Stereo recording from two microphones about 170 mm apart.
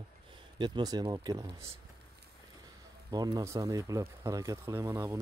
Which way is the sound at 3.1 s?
20° right (ahead or behind).